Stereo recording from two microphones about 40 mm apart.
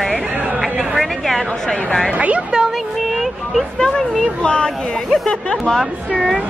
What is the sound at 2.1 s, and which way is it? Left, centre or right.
Speech, right.